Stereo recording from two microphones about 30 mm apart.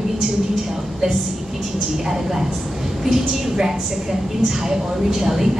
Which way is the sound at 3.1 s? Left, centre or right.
Centre.